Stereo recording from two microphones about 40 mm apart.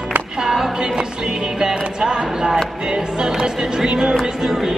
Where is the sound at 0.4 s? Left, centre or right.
Centre.